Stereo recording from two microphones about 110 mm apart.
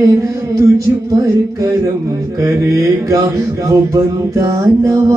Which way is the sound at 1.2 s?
25° right (ahead or behind).